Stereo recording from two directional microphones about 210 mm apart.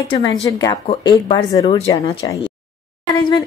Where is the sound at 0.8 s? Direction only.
30° left (ahead or behind).